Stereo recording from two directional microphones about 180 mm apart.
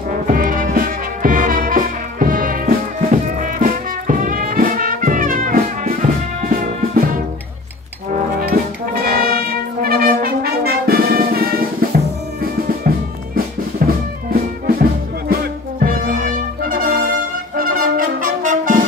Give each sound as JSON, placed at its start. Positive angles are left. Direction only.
{"t": 0.3, "sound": "music", "side_deg": -50}
{"t": 9.0, "sound": "brass instrument", "side_deg": -55}
{"t": 12.4, "sound": "music", "side_deg": -55}
{"t": 17.6, "sound": "brass instrument", "side_deg": -50}